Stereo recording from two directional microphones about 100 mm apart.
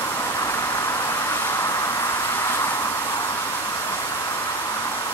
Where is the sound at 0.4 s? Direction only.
30° left (ahead or behind).